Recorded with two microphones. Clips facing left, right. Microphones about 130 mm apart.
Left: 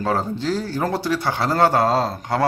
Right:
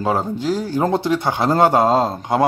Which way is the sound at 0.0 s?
15° right (ahead or behind).